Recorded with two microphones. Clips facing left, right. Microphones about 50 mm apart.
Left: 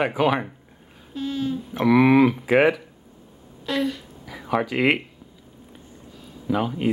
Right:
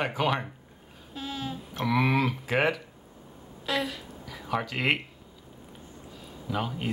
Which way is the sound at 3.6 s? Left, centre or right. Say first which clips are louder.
Left 5 dB; centre.